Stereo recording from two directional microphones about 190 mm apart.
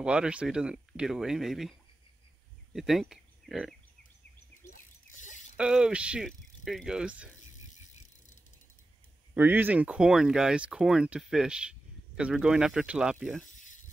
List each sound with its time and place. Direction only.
0.0 s speech: 5° right (ahead or behind)
4.6 s mechanisms: 45° left (ahead or behind)
5.6 s speech: 5° right (ahead or behind)
9.3 s speech: 10° right (ahead or behind)